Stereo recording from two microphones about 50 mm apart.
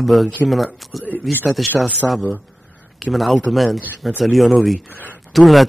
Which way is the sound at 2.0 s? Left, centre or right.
Left.